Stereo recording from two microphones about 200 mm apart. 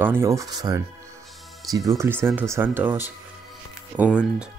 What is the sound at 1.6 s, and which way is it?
Speech, centre (ahead or behind).